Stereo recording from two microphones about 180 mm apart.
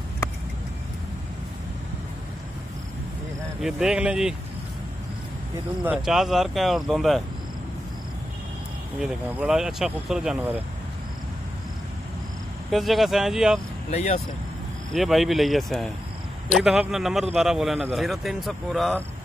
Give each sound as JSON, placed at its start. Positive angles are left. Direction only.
{"t": 3.6, "sound": "a man's voice", "side_deg": -5}
{"t": 5.9, "sound": "a man's voice", "side_deg": 0}
{"t": 9.0, "sound": "a man's voice", "side_deg": -5}
{"t": 12.7, "sound": "a man's voice", "side_deg": 0}
{"t": 13.8, "sound": "speech", "side_deg": 35}
{"t": 14.9, "sound": "a man's voice", "side_deg": 0}